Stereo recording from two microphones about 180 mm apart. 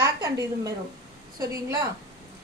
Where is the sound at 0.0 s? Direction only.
20° right (ahead or behind).